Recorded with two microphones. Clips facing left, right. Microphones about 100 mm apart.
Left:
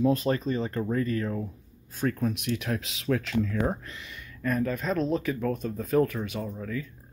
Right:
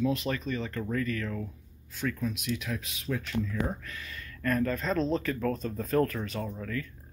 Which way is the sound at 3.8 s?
20° left (ahead or behind).